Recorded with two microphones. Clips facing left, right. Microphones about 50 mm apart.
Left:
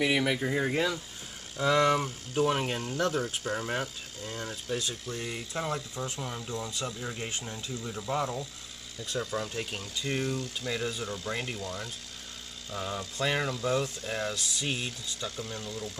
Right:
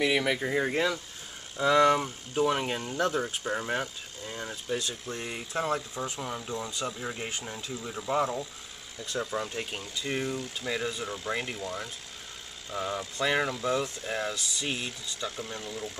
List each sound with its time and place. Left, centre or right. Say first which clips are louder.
0.0 s speech: right 1 dB; centre
5.0 s speech: even; centre